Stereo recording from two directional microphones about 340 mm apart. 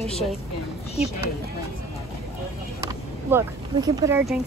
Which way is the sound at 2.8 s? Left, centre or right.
Centre.